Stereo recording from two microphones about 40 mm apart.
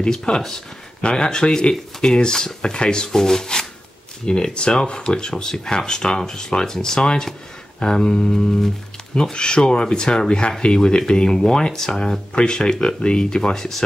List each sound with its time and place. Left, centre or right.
0.0 s speech: centre